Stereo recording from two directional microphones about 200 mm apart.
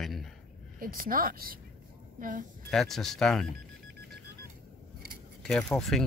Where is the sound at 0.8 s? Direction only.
45° right (ahead or behind).